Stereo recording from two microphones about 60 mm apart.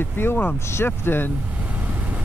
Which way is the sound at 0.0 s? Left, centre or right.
Left.